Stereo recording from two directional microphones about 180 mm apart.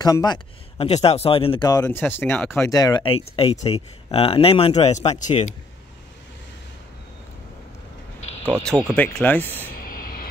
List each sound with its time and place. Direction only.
0.0 s speech: 20° left (ahead or behind)
0.7 s speech: 35° left (ahead or behind)
1.9 s speech: 10° left (ahead or behind); by 5.5 s 40° left (ahead or behind)
8.5 s speech: 10° left (ahead or behind)
9.8 s train: 55° left (ahead or behind)